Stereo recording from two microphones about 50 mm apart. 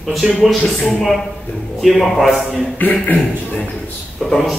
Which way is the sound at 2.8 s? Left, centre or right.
Left.